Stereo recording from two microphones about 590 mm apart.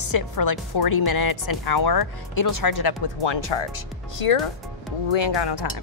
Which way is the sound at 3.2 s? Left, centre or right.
Left.